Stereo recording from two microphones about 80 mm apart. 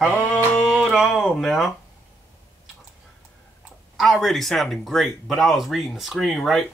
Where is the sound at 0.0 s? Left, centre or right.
Left.